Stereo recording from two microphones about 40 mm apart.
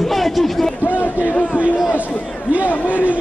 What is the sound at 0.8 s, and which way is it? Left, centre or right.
Speech, left.